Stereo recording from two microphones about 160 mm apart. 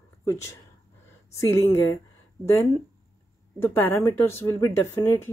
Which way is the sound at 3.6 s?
15° left (ahead or behind).